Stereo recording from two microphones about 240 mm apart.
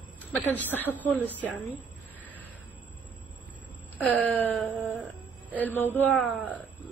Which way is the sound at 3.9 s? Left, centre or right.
Centre.